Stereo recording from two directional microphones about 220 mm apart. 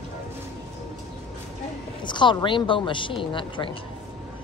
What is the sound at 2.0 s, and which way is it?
A woman's voice, 20° left (ahead or behind).